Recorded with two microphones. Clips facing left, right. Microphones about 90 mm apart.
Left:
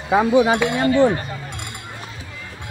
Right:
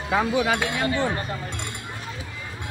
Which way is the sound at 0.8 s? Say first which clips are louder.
Left 9 dB; 35° left (ahead or behind).